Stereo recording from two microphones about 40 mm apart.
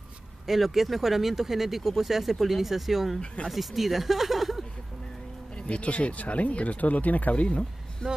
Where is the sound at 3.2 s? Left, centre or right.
Left.